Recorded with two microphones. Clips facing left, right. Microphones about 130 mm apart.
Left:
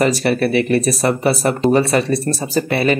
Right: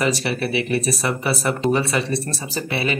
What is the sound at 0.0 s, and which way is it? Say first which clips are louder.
Speech: left 6 dB; 45° left (ahead or behind).